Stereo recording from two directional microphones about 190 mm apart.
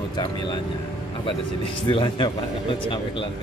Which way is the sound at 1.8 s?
25° left (ahead or behind).